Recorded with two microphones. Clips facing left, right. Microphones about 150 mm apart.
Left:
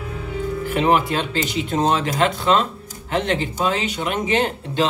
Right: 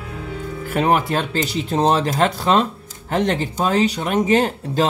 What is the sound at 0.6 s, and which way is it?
Speech, 40° right (ahead or behind).